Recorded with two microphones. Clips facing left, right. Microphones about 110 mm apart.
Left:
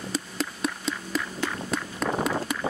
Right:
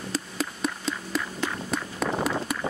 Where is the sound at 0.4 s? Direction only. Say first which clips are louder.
Even; centre (ahead or behind).